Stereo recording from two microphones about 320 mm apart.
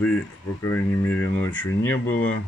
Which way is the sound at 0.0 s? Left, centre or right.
Centre.